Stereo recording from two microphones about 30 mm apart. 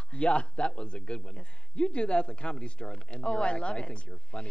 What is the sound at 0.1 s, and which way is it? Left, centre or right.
A woman's voice, left.